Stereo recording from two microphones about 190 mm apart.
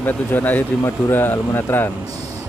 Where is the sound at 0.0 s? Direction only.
10° left (ahead or behind).